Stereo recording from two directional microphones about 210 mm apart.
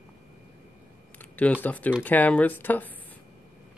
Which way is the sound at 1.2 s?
10° left (ahead or behind).